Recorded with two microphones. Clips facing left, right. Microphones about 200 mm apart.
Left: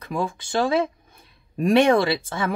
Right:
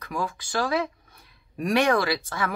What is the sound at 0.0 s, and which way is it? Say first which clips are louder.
Speech: left 4 dB; 25° left (ahead or behind).